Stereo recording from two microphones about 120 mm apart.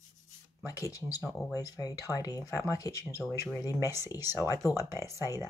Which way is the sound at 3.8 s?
20° right (ahead or behind).